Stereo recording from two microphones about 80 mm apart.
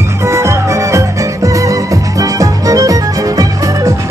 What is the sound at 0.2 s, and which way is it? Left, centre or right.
Music, right.